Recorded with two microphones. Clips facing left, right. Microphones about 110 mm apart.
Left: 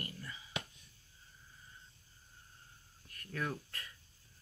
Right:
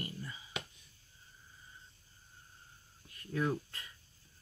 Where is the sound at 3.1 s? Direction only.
20° right (ahead or behind).